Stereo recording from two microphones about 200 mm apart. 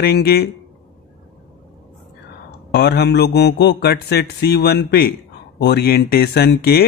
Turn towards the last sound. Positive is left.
turn(degrees=55)  # may be behind; listen again after turning